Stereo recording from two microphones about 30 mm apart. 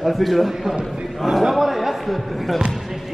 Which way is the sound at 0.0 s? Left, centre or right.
Centre.